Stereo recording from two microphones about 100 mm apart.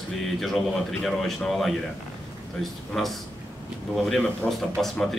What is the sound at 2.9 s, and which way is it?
A man's voice, centre (ahead or behind).